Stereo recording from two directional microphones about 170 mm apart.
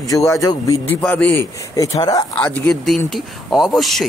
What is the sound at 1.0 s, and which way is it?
Speech, 10° left (ahead or behind).